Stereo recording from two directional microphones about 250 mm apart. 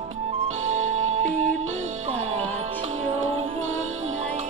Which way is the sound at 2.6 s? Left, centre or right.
Right.